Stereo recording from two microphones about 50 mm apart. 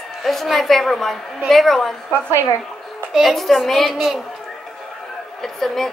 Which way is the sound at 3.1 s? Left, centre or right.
Centre.